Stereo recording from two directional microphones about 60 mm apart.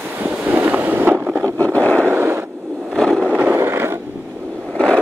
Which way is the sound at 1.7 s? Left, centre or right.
Left.